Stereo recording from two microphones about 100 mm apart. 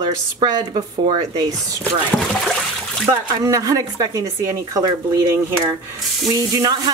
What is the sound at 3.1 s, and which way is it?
Speech, 35° right (ahead or behind).